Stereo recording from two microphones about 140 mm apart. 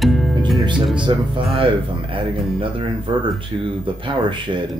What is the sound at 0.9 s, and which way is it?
Speech, 35° right (ahead or behind).